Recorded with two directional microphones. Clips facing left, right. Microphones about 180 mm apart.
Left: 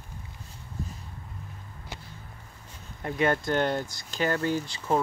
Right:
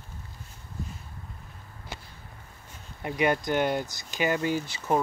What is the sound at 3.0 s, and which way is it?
Speech, 15° right (ahead or behind).